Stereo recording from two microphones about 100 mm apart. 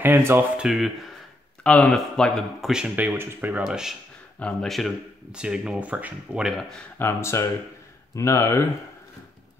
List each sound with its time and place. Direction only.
0.0 s speech: 25° right (ahead or behind)
0.6 s speech: 5° right (ahead or behind)
1.6 s speech: 10° left (ahead or behind)
2.7 s speech: 10° right (ahead or behind)
3.1 s speech: 20° right (ahead or behind)
3.6 s speech: 5° right (ahead or behind)
4.4 s speech: 10° left (ahead or behind)
4.6 s speech: centre (ahead or behind)
7.0 s speech: 25° left (ahead or behind)